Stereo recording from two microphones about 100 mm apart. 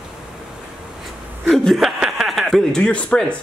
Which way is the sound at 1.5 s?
5° left (ahead or behind).